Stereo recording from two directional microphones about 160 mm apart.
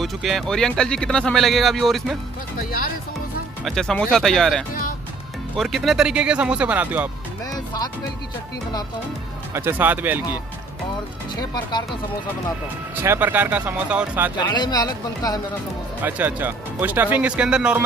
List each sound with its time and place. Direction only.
0.0 s speech: centre (ahead or behind)
3.6 s speech: 5° left (ahead or behind)
7.5 s speech: 25° left (ahead or behind)
9.5 s speech: 15° right (ahead or behind)
11.3 s speech: 25° left (ahead or behind)
12.9 s speech: 15° right (ahead or behind)
14.4 s speech: 25° left (ahead or behind)
16.0 s speech: 10° right (ahead or behind)